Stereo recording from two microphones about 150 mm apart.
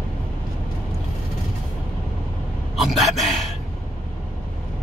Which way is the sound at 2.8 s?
Centre (ahead or behind).